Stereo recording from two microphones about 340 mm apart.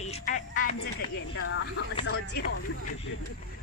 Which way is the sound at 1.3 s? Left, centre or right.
Left.